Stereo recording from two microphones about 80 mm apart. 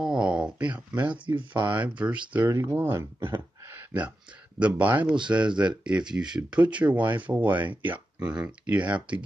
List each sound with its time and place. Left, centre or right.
0.0 s a sound: centre
1.2 s speech: right
1.7 s speech: centre